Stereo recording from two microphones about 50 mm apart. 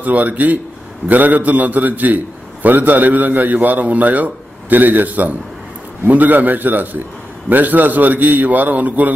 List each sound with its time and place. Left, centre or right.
0.0 s a man's voice: right